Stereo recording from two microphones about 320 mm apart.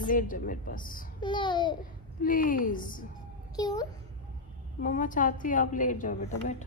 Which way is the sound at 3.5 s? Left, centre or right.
Centre.